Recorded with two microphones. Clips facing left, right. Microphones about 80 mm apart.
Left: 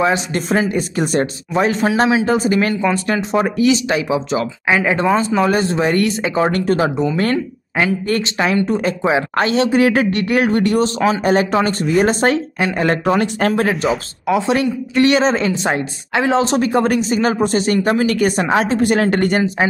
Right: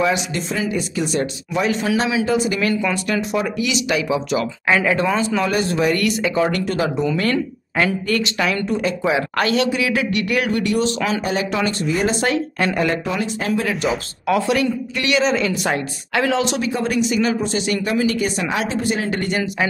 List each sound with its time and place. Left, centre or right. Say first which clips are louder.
0.0 s speech: left 3 dB; left
0.5 s speech: left 7 dB; left
4.1 s a woman's voice: left 2 dB; left
4.6 s speech: left 1 dB; centre
4.9 s a woman's voice: left 4 dB; left
8.1 s a woman's voice: left 3 dB; left
9.7 s speech: left 6 dB; left
10.2 s speech: left 5 dB; left
12.5 s speech: left 1 dB; centre
12.8 s speech: left 5 dB; left
14.2 s a woman's voice: left 2 dB; left
16.5 s speech: left 5 dB; left